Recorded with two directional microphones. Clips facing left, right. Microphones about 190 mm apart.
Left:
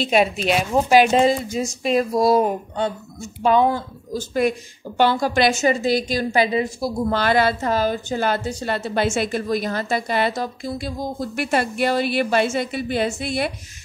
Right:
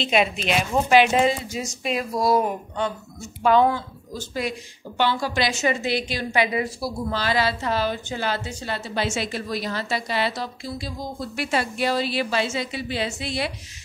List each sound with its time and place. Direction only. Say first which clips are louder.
0.0 s speech: left 3 dB; 40° left (ahead or behind)
3.7 s a woman's voice: left 5 dB; 50° left (ahead or behind)
7.1 s a woman's voice: left 5 dB; 55° left (ahead or behind)